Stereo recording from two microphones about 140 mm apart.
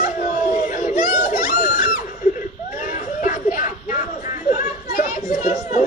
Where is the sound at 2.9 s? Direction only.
65° left (ahead or behind).